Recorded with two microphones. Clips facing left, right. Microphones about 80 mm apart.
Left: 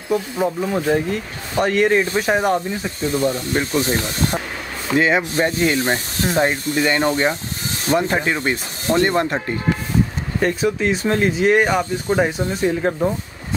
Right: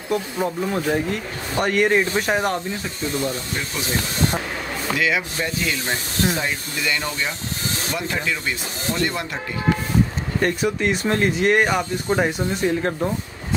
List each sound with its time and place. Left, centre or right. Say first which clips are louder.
0.1 s speech: left 3 dB; centre
3.3 s speech: left 6 dB; left
4.9 s speech: left 6 dB; left
10.4 s speech: left 2 dB; centre